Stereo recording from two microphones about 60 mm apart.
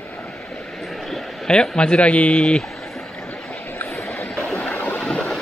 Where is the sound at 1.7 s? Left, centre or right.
Centre.